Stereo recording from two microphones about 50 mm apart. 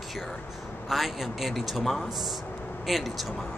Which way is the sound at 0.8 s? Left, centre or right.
Centre.